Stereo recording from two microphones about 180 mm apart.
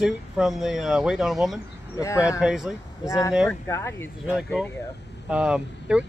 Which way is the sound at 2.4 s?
5° right (ahead or behind).